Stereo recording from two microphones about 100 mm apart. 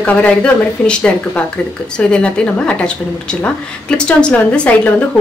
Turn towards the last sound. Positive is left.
turn(degrees=10)  # may be behind; listen again after turning